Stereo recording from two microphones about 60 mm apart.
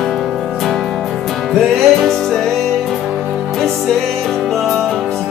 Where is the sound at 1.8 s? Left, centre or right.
Centre.